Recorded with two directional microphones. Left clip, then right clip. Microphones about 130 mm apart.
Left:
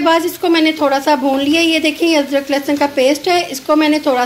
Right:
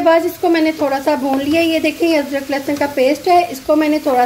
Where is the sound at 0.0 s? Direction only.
Centre (ahead or behind).